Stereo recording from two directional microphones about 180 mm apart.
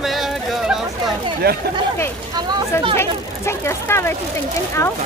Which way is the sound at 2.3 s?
25° right (ahead or behind).